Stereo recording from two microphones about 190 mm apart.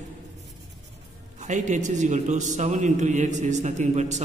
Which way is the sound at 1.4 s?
40° right (ahead or behind).